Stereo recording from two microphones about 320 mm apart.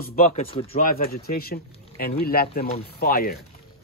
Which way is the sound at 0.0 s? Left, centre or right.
Left.